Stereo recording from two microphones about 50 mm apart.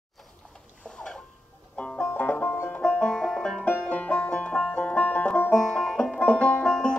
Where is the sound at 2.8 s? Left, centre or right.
Centre.